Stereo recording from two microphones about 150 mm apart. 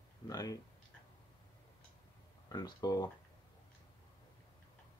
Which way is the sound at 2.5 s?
25° left (ahead or behind).